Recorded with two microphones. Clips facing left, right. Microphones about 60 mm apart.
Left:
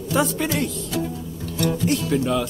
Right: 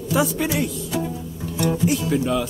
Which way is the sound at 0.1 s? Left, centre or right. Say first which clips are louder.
Right 1 dB; centre.